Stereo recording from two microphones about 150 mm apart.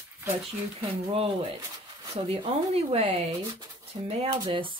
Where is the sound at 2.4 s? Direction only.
40° right (ahead or behind).